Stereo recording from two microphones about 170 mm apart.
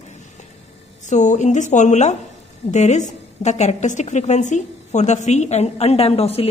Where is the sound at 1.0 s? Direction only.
45° left (ahead or behind).